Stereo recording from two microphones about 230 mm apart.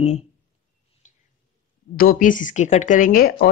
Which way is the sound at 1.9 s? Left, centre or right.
Left.